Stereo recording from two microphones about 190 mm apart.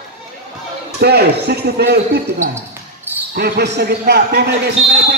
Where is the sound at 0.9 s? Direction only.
60° right (ahead or behind).